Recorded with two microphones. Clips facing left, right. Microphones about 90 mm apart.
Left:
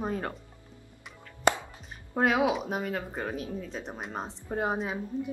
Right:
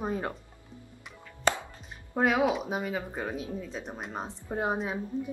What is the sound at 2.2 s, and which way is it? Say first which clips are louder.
Speech: even; centre (ahead or behind).